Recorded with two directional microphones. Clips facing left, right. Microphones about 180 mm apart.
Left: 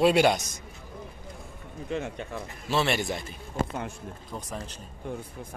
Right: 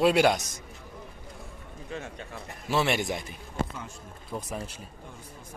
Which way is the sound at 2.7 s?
15° right (ahead or behind).